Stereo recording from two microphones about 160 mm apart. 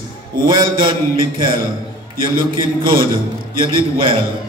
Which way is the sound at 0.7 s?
30° right (ahead or behind).